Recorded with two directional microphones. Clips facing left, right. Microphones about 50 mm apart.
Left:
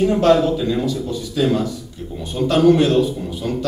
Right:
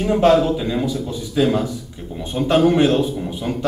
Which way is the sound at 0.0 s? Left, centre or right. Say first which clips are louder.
Even; centre.